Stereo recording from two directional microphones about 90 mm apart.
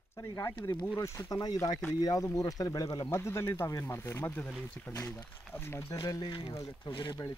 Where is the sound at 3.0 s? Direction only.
30° left (ahead or behind).